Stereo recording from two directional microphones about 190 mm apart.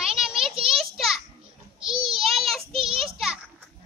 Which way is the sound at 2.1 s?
Centre (ahead or behind).